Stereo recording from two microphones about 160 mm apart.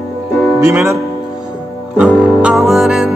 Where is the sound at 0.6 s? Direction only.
15° right (ahead or behind).